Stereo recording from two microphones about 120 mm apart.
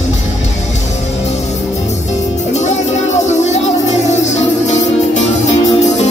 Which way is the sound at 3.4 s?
75° left (ahead or behind).